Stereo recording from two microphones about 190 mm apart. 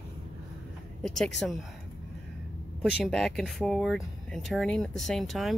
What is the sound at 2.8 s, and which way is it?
Speech, centre (ahead or behind).